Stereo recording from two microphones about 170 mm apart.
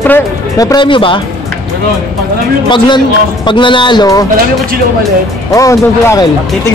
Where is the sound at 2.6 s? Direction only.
25° left (ahead or behind).